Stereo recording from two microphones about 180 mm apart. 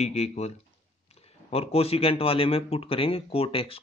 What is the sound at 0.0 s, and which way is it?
Speech, 35° left (ahead or behind).